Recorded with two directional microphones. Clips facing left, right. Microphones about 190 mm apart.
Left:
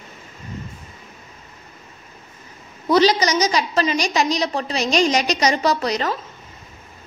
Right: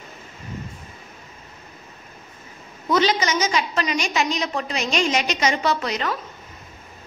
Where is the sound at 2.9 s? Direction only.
35° left (ahead or behind).